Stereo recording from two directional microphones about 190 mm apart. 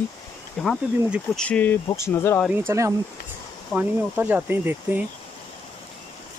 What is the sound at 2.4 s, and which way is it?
Speech, 10° right (ahead or behind).